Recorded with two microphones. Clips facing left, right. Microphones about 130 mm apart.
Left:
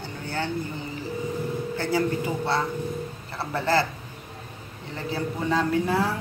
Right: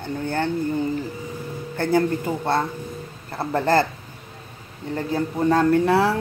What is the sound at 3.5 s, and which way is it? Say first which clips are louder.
Speech: right 4 dB; 50° right (ahead or behind).